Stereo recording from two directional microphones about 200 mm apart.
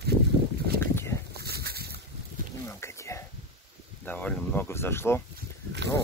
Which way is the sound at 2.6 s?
15° left (ahead or behind).